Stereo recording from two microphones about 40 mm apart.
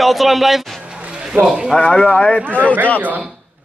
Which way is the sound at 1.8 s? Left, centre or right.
Left.